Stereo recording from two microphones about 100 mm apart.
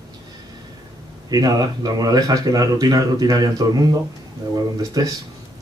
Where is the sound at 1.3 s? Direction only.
40° right (ahead or behind).